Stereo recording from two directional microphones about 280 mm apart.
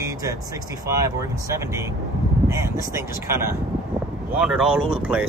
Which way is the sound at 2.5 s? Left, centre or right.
Centre.